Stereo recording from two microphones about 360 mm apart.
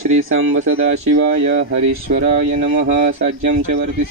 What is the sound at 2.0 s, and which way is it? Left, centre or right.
Speech, centre.